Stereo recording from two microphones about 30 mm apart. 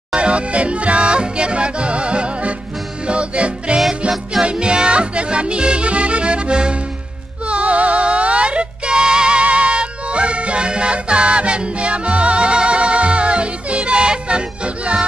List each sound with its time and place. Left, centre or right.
0.1 s music: right
7.4 s music: right
9.4 s music: right